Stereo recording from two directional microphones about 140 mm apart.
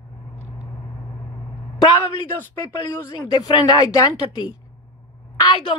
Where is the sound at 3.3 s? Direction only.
30° left (ahead or behind).